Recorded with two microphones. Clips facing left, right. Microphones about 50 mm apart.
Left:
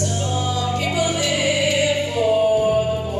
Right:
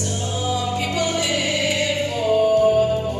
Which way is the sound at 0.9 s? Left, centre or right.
Centre.